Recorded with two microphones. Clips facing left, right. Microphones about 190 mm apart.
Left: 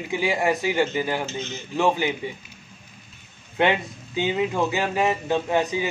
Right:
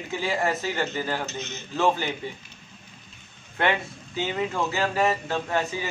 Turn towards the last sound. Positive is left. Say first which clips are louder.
# left 4 dB
turn(degrees=15)  # may be behind; listen again after turning